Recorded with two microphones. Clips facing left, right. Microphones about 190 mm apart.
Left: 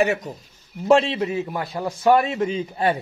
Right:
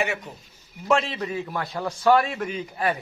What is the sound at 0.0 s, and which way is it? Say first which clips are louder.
A man's voice: left 7 dB; 40° left (ahead or behind).